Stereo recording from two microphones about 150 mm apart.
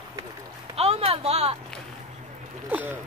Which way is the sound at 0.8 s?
45° right (ahead or behind).